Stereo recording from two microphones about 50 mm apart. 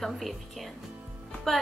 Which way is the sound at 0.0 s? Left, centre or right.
Centre.